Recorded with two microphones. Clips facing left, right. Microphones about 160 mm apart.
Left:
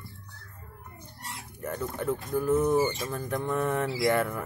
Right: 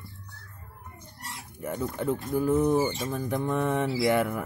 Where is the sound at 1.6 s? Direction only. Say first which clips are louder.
Right 2 dB; 20° right (ahead or behind).